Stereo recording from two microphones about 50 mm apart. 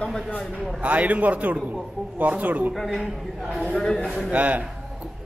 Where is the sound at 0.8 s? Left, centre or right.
Right.